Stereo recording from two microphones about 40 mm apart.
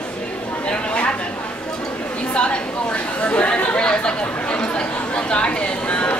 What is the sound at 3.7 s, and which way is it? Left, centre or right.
Speech, left.